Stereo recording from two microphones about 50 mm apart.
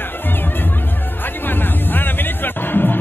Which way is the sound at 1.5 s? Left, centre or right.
Left.